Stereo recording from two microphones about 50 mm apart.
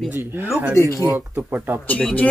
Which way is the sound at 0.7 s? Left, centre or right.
Left.